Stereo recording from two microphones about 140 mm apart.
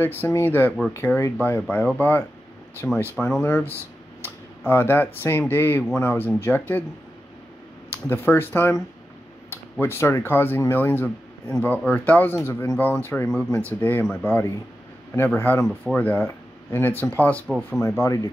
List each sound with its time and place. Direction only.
0.0 s speech: 15° left (ahead or behind)
8.1 s speech: 15° left (ahead or behind)